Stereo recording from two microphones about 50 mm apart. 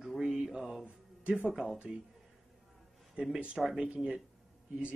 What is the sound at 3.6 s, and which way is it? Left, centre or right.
Speech, centre.